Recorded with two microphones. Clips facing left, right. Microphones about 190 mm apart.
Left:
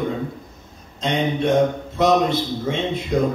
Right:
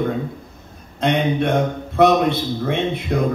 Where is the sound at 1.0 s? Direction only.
60° right (ahead or behind).